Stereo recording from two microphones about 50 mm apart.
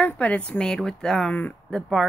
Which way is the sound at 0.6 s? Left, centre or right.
Centre.